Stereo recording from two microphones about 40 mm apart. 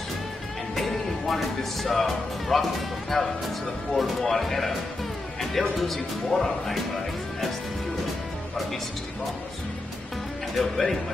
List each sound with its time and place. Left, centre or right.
0.7 s speech: centre
10.6 s speech: centre